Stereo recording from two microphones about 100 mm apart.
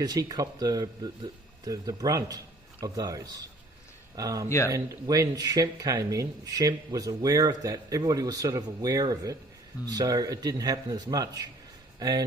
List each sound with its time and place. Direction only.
0.0 s speech: 40° right (ahead or behind)